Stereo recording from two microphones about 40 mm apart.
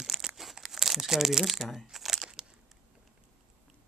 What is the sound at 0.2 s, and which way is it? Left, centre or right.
Crumpling, centre.